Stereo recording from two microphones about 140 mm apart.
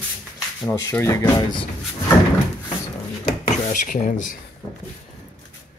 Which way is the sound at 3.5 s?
65° left (ahead or behind).